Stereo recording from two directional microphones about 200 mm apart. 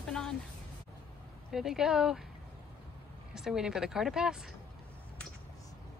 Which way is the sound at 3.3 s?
5° right (ahead or behind).